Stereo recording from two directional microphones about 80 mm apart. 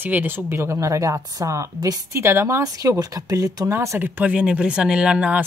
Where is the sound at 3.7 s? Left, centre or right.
Right.